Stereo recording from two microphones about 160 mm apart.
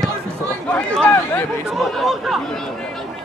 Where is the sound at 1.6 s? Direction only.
Centre (ahead or behind).